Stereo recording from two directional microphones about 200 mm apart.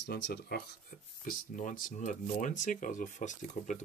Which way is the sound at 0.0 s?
55° left (ahead or behind).